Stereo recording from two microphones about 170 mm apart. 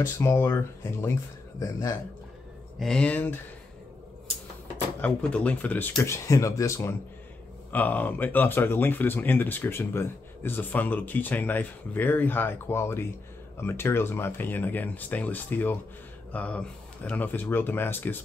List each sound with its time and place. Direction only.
0.0 s speech: 15° left (ahead or behind)
2.8 s speech: 5° left (ahead or behind)
5.0 s speech: 10° left (ahead or behind)